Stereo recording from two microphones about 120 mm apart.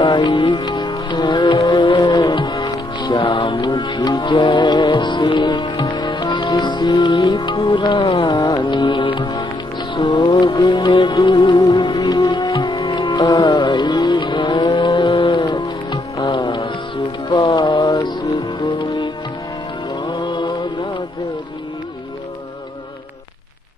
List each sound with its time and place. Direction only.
0.0 s music: 40° left (ahead or behind)
20.1 s mantra: 40° left (ahead or behind)